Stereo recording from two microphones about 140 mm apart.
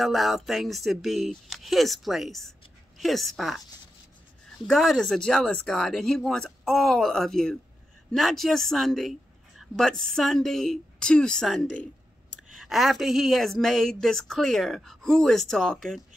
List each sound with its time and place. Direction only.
0.0 s speech: centre (ahead or behind)
4.6 s speech: centre (ahead or behind)